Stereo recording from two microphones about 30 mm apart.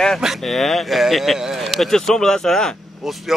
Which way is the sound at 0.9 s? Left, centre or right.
Centre.